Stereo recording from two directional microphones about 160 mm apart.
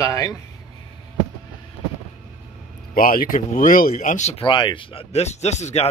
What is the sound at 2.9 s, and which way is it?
Speech, 60° left (ahead or behind).